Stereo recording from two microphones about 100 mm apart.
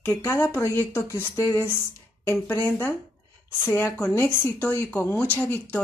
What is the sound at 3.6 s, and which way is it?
Speech, 25° left (ahead or behind).